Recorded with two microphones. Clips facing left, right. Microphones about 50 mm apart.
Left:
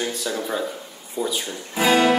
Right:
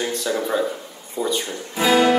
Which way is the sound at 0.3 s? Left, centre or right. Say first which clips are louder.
Right 7 dB; centre.